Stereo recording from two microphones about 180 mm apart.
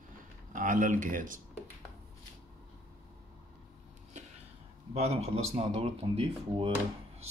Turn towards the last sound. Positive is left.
turn(degrees=-35)  # may be behind; listen again after turning